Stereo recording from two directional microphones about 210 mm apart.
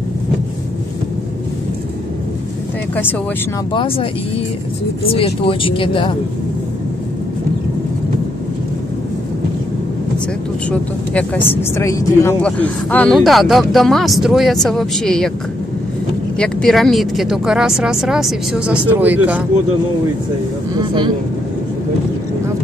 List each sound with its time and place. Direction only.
3.7 s speech: 25° left (ahead or behind)
10.7 s speech: 5° left (ahead or behind)
16.3 s speech: centre (ahead or behind)
20.7 s speech: 20° right (ahead or behind)